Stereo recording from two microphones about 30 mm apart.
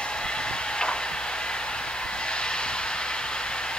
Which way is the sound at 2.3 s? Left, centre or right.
Left.